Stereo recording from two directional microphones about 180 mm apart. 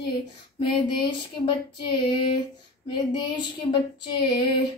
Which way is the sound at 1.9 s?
25° left (ahead or behind).